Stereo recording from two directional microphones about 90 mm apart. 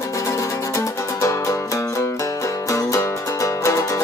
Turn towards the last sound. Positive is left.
turn(degrees=35)  # may be behind; listen again after turning